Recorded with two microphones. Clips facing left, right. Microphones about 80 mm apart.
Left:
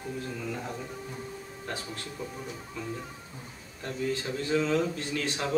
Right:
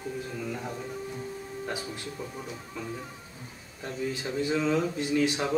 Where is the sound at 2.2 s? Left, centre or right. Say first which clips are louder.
Left 4 dB; centre.